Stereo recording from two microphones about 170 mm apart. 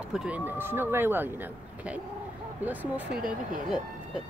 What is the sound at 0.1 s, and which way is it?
Speech, 5° right (ahead or behind).